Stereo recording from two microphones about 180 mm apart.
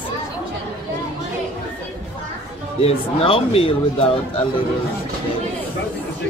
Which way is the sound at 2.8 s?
30° left (ahead or behind).